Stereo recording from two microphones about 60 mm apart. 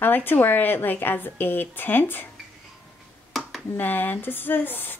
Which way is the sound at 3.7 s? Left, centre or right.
Left.